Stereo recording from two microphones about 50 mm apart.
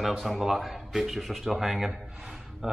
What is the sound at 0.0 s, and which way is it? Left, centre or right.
Speech, centre.